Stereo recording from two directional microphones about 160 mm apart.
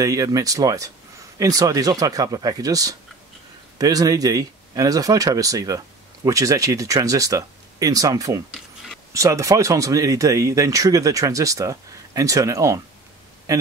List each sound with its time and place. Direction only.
0.0 s speech: 20° right (ahead or behind)